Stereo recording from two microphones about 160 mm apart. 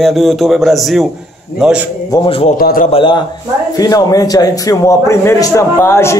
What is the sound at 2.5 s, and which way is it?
Speech, 65° left (ahead or behind).